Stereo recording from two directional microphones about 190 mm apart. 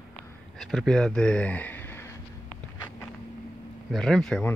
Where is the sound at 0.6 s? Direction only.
Centre (ahead or behind).